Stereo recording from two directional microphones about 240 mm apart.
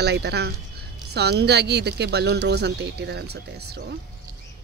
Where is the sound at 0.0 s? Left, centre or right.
Right.